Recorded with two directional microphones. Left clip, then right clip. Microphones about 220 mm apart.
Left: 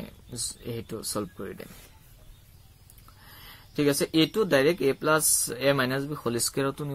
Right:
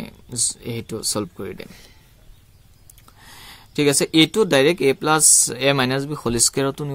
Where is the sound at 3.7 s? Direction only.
45° right (ahead or behind).